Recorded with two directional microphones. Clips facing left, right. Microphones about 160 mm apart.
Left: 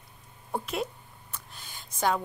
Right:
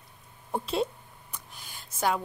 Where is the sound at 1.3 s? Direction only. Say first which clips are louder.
Even; 10° right (ahead or behind).